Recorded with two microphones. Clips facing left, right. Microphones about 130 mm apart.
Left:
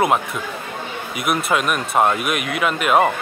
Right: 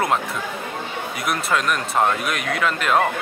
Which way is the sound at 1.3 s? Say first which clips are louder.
Left 3 dB; 20° left (ahead or behind).